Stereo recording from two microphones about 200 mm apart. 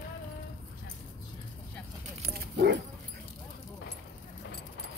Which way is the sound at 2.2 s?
55° right (ahead or behind).